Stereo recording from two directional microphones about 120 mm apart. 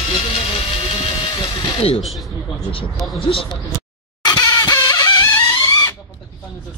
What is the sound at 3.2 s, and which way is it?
Speech, 50° left (ahead or behind).